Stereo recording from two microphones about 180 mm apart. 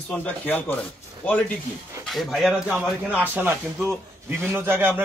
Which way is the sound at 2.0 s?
Centre (ahead or behind).